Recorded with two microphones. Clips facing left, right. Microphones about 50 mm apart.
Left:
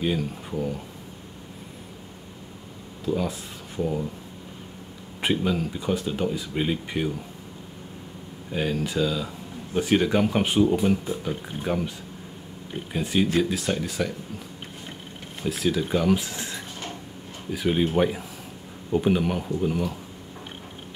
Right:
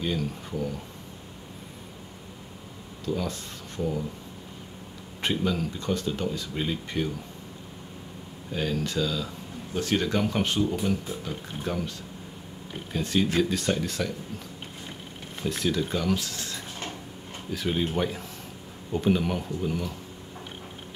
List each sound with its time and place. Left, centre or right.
0.0 s speech: centre
3.1 s speech: centre
5.2 s speech: centre
8.5 s speech: centre
12.9 s speech: centre
15.4 s speech: centre
15.8 s speech: centre